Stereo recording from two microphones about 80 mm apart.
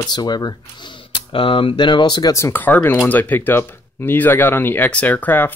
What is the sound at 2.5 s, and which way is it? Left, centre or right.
Speech, left.